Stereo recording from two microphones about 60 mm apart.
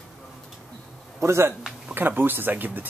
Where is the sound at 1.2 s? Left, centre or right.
Right.